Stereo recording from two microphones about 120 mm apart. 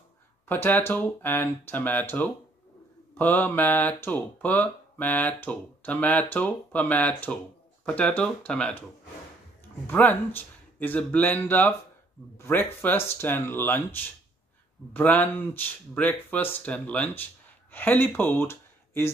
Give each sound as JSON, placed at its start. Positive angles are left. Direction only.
{"t": 0.5, "sound": "speech", "side_deg": 15}
{"t": 9.8, "sound": "speech", "side_deg": 15}
{"t": 15.0, "sound": "speech", "side_deg": 15}